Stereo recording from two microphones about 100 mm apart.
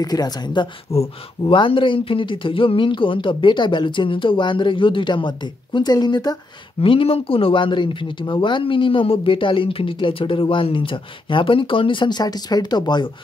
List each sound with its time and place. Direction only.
0.0 s speech: 45° left (ahead or behind)
0.9 s speech: 90° left
1.4 s speech: 55° left (ahead or behind)
6.8 s speech: 65° left (ahead or behind); by 13.1 s 45° left (ahead or behind)